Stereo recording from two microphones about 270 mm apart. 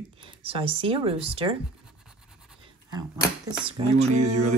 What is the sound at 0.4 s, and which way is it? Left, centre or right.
Speech, right.